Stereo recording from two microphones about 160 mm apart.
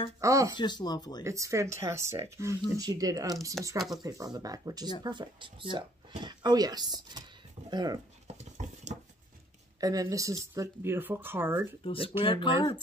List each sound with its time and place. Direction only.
0.2 s speech: 20° right (ahead or behind)
0.6 s speech: 25° left (ahead or behind)
1.2 s speech: 20° right (ahead or behind)
3.6 s speech: centre (ahead or behind)
3.9 s speech: 25° right (ahead or behind)
8.3 s dog: 45° right (ahead or behind)
9.8 s speech: 20° right (ahead or behind)
11.8 s speech: 35° left (ahead or behind)